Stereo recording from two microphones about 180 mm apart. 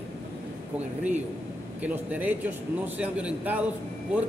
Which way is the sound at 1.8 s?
10° right (ahead or behind).